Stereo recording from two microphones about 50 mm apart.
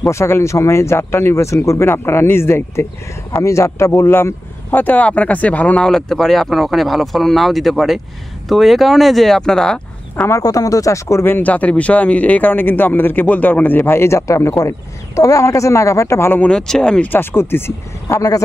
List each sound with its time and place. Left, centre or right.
0.1 s speech: left
3.4 s speech: left
4.1 s speech: left
5.8 s speech: centre
10.9 s speech: left
11.4 s speech: left
15.1 s speech: left
16.4 s speech: centre
17.0 s speech: left